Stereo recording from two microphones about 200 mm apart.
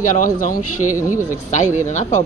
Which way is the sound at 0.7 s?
90° left.